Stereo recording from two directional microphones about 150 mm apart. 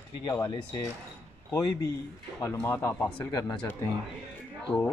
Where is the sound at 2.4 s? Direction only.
20° left (ahead or behind).